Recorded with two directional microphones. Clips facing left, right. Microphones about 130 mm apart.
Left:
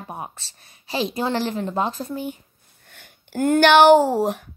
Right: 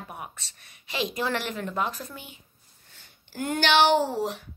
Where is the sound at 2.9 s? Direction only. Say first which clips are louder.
Left 12 dB; 55° left (ahead or behind).